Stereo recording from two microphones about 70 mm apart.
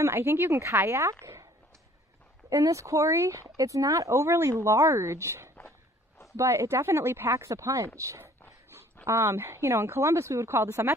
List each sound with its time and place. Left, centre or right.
0.0 s speech: right
2.5 s speech: right